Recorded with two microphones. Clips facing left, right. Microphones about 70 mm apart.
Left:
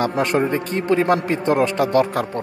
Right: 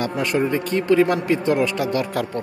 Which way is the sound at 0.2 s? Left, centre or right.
Left.